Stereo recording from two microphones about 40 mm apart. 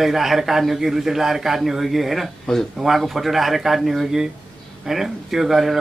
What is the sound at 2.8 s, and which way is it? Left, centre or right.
Speech, centre.